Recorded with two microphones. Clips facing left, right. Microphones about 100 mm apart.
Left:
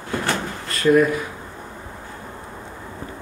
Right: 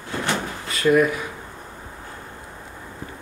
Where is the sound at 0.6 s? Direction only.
5° right (ahead or behind).